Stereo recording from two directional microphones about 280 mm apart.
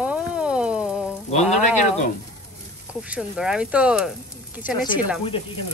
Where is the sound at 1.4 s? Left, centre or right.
Left.